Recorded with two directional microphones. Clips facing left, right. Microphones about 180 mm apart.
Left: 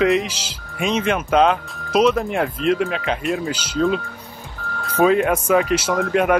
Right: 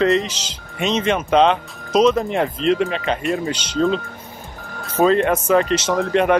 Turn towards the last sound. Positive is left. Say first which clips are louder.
# right 1 dB
turn(degrees=5)  # may be behind; listen again after turning